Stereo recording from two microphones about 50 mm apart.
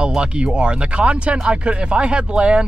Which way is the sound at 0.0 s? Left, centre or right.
Centre.